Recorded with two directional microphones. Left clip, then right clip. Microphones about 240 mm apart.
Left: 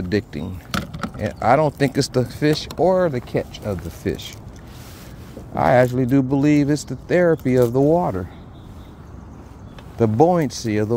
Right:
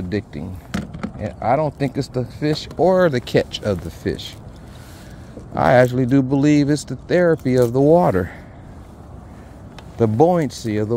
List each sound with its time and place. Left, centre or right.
0.1 s speech: centre
0.7 s a sound: left
1.2 s speech: centre
2.8 s speech: centre
4.0 s speech: centre
5.5 s speech: centre
7.9 s speech: right
9.9 s speech: centre